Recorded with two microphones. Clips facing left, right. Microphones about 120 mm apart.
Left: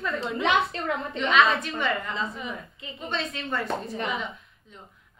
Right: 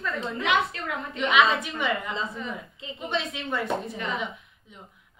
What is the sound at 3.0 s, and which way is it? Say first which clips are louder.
Speech: right 1 dB; 15° right (ahead or behind).